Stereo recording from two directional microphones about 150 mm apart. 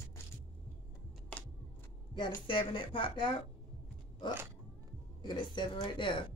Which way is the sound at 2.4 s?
35° left (ahead or behind).